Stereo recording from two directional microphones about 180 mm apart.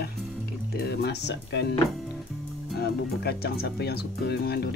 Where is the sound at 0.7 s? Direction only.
65° left (ahead or behind).